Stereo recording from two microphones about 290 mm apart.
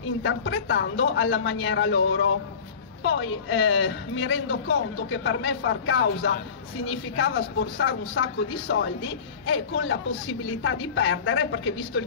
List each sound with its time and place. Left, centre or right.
0.2 s speech: left